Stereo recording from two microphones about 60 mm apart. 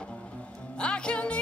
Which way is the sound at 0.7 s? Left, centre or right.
Centre.